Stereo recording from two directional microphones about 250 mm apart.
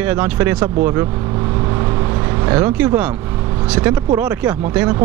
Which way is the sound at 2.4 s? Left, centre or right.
Centre.